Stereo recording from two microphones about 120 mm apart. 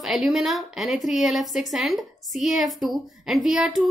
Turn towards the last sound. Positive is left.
turn(degrees=-5)  # may be behind; listen again after turning